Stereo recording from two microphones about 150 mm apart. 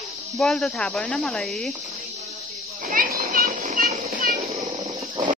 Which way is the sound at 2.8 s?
65° right (ahead or behind).